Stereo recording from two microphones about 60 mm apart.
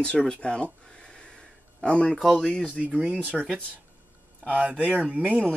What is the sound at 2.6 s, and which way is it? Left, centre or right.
Speech, centre.